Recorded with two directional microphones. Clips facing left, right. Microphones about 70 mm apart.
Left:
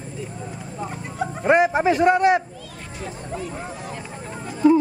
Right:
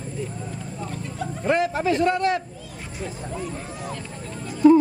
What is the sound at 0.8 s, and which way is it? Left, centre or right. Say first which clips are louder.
Speech: left 5 dB; left.